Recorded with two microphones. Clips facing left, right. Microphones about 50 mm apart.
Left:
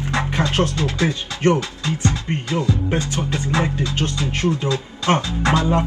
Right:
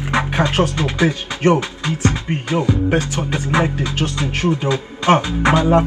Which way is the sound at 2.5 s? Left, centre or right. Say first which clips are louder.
Right 5 dB; right.